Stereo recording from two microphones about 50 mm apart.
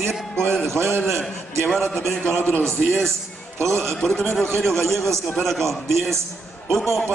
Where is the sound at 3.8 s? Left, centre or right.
Centre.